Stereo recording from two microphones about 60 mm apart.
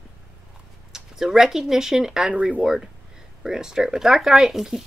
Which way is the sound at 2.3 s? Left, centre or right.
Right.